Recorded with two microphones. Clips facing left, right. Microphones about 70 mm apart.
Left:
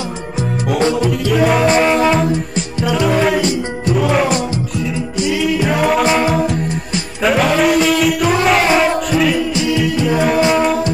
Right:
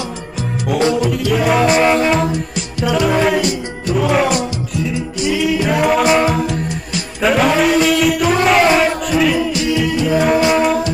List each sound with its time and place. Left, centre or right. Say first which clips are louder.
1.1 s music: left 1 dB; centre
3.3 s music: left 1 dB; left
3.9 s music: even; centre
5.3 s a capella: right 1 dB; centre
7.2 s music: even; centre